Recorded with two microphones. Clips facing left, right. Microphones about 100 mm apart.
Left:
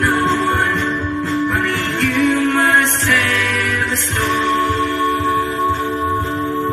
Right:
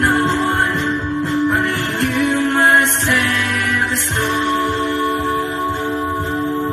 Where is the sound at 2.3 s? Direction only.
20° right (ahead or behind).